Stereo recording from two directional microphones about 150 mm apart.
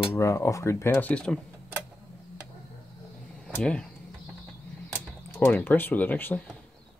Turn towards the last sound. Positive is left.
turn(degrees=10)  # may be behind; listen again after turning